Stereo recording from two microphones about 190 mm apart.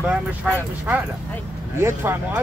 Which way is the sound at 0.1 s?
10° right (ahead or behind).